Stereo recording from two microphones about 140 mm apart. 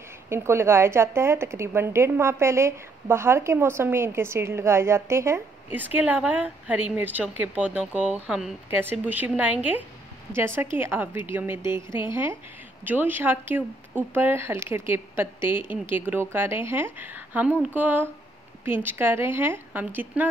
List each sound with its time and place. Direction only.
0.3 s a woman's voice: 20° right (ahead or behind); by 8.5 s 5° right (ahead or behind)
8.6 s a woman's voice: 15° right (ahead or behind)